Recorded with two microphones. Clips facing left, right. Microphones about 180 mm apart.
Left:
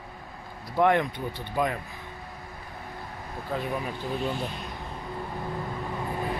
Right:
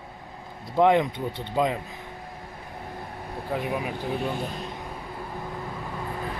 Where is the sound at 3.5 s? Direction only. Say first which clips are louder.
Right 2 dB; 15° right (ahead or behind).